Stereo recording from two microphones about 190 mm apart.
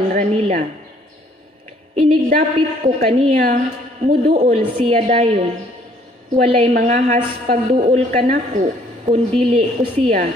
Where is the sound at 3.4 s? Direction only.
45° right (ahead or behind).